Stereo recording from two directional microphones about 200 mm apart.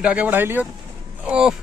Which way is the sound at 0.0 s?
5° right (ahead or behind).